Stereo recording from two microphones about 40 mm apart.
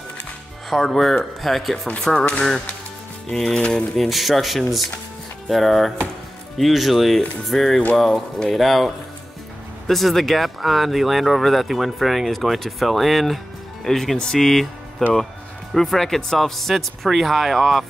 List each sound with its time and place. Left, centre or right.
0.7 s speech: centre
2.1 s speech: left
3.3 s speech: centre
4.1 s speech: centre